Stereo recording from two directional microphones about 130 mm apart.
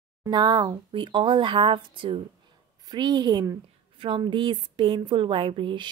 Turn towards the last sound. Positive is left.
turn(degrees=-40)  # may be behind; listen again after turning